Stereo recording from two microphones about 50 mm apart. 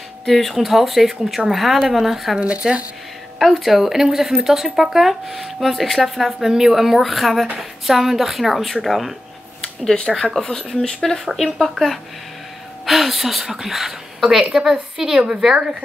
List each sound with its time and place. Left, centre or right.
0.2 s speech: centre
2.6 s speech: centre
3.3 s speech: centre
9.6 s a sound: centre
10.4 s a woman's voice: centre